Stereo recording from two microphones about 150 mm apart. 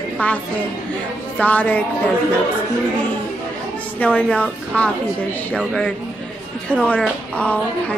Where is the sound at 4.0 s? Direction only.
10° left (ahead or behind).